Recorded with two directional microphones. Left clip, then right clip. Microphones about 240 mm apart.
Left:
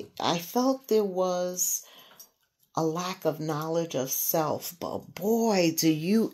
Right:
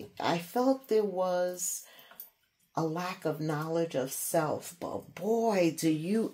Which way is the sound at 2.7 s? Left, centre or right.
Left.